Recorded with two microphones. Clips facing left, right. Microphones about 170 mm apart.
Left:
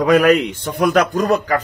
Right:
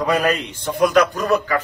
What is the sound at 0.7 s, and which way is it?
Speech, 45° left (ahead or behind).